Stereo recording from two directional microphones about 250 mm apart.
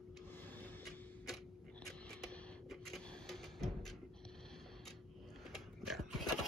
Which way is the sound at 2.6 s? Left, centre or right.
Centre.